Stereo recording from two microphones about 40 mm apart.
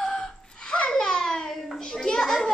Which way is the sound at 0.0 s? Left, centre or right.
Centre.